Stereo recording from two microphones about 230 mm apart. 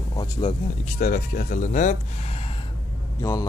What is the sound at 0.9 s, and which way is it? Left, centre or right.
Speech, left.